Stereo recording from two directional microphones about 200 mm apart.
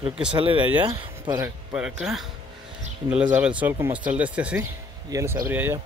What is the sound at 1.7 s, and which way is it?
Speech, 5° right (ahead or behind).